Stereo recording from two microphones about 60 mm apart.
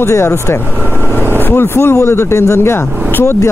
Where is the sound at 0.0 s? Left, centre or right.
Left.